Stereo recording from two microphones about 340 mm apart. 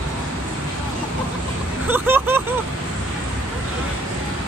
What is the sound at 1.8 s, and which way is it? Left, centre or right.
Vehicle, centre.